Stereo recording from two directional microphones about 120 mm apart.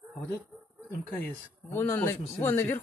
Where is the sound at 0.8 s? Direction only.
15° left (ahead or behind).